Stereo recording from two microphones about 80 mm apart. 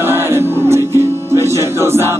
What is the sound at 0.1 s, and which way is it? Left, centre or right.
Music, right.